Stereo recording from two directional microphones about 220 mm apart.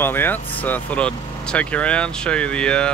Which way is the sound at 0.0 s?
10° left (ahead or behind).